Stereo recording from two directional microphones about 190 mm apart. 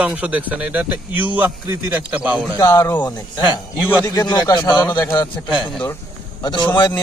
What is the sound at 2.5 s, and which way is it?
Speech, 15° left (ahead or behind).